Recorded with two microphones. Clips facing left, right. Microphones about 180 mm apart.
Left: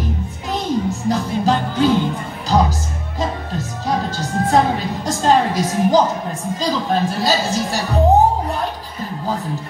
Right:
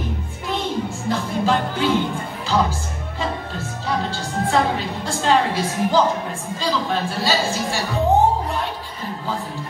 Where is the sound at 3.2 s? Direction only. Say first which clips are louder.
Left 4 dB; 40° left (ahead or behind).